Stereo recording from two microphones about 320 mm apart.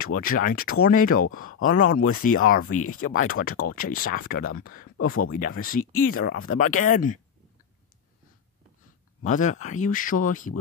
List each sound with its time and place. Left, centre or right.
0.0 s speech: left
1.3 s speech: left
1.7 s speech: left
2.8 s speech: left
3.1 s speech: left
4.9 s speech: left
5.3 s speech: left
9.2 s speech: left